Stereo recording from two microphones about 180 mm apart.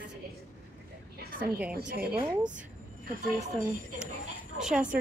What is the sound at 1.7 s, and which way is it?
Speech, 60° right (ahead or behind).